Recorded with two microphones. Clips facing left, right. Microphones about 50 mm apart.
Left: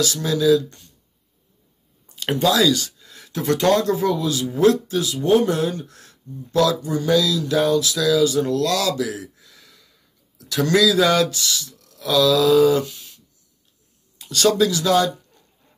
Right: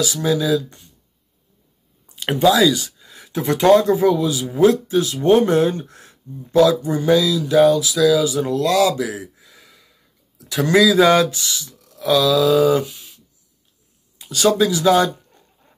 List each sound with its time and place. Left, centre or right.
0.0 s speech: centre
2.0 s speech: centre
5.1 s speech: right